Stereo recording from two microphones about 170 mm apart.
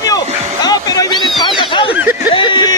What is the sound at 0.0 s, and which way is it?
Music, 20° left (ahead or behind).